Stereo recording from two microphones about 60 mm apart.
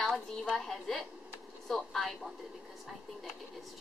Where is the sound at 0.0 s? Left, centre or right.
Centre.